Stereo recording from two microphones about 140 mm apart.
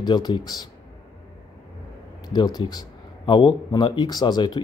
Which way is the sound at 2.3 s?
30° left (ahead or behind).